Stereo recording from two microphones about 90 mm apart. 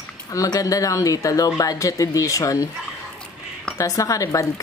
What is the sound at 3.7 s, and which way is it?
Speech, 40° left (ahead or behind).